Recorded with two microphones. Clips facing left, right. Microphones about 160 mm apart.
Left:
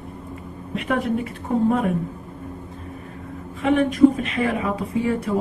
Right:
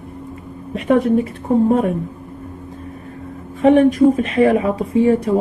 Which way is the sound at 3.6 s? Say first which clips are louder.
Right 5 dB; 30° right (ahead or behind).